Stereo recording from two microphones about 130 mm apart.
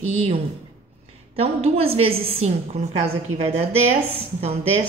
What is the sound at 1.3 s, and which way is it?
Speech, 50° right (ahead or behind).